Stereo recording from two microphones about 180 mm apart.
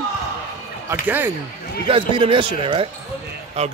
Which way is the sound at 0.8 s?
10° right (ahead or behind).